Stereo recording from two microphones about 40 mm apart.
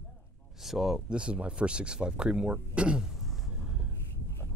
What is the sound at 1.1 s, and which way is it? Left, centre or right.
Speech, right.